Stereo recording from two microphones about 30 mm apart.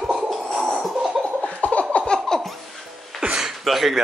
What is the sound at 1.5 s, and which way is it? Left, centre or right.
Laughter, left.